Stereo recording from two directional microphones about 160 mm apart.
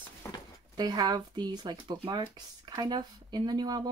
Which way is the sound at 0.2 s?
20° left (ahead or behind).